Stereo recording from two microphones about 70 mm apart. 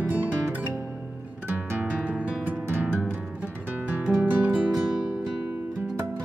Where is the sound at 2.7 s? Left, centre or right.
Right.